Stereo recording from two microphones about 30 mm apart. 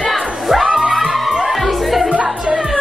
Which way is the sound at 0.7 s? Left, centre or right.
Centre.